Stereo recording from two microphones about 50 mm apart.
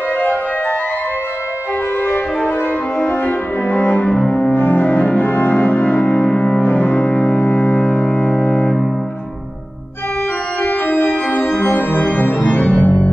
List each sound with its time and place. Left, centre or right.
0.2 s music: left
2.0 s music: left
3.6 s music: left
4.3 s cello: left
5.0 s music: left
6.3 s cello: centre
6.6 s music: left
10.6 s organ: left